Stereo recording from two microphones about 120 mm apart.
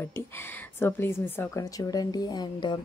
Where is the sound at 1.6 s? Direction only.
30° left (ahead or behind).